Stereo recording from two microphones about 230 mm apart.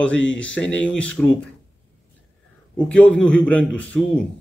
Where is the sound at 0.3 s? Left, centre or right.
Centre.